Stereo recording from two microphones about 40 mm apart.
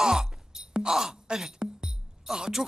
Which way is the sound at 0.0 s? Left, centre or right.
Centre.